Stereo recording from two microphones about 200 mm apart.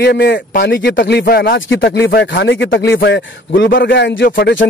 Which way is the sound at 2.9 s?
50° left (ahead or behind).